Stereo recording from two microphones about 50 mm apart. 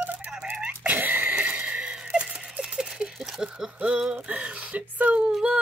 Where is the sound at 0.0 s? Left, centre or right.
Right.